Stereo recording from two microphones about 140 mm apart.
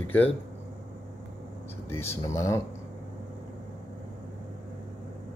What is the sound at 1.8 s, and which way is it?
Speech, 20° left (ahead or behind).